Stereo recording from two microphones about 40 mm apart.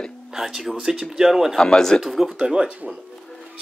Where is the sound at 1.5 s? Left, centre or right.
Centre.